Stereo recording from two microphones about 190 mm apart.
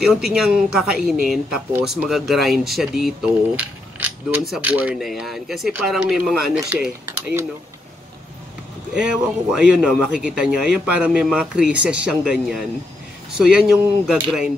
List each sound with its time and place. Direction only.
0.3 s speech: 5° right (ahead or behind)
8.9 s speech: 5° right (ahead or behind)